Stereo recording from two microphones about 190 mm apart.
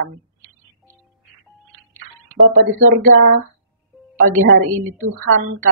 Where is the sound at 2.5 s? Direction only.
90° right.